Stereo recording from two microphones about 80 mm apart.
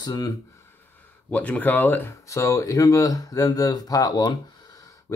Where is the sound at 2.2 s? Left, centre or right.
Left.